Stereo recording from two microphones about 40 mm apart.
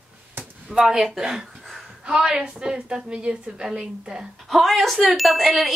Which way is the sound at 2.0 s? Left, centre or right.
Centre.